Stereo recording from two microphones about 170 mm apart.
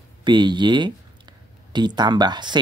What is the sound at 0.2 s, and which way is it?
Speech, 25° right (ahead or behind).